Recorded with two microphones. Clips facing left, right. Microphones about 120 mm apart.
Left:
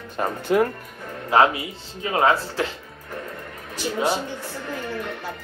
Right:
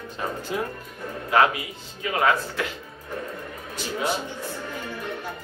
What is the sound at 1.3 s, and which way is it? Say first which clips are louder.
A man's voice: left 3 dB; 30° left (ahead or behind).